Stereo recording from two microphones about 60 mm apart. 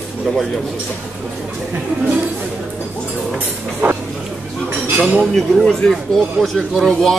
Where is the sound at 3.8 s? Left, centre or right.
Right.